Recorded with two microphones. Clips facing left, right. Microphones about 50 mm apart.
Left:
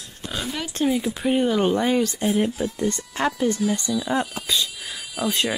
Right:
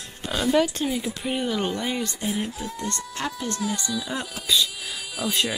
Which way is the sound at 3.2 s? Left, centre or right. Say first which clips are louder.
Left 9 dB; left.